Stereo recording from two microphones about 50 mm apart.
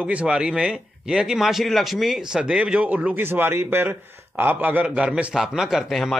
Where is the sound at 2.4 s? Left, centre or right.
Right.